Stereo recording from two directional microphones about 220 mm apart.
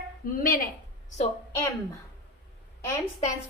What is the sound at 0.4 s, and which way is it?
Speech, 40° left (ahead or behind).